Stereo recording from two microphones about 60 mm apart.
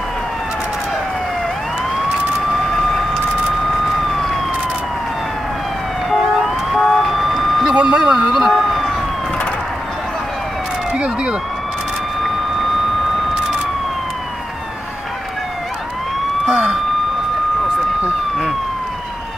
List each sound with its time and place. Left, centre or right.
6.7 s emergency vehicle: centre
7.7 s speech: centre
10.9 s speech: centre
16.4 s police car: centre